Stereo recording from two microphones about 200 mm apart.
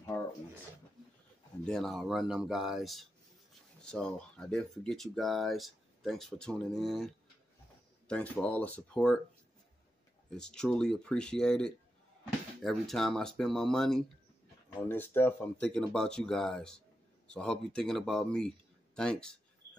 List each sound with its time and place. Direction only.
0.1 s a sound: 15° left (ahead or behind)
1.6 s speech: centre (ahead or behind)
8.1 s speech: 5° left (ahead or behind)
10.3 s speech: 5° left (ahead or behind)